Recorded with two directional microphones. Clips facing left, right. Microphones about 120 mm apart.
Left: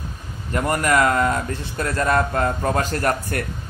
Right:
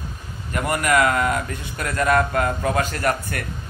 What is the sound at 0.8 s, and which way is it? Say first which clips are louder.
A man's voice: even; 40° left (ahead or behind).